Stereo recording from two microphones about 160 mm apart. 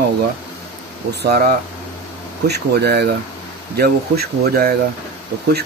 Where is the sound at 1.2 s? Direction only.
90° right.